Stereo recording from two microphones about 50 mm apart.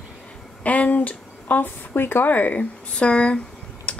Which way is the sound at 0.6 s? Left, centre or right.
Left.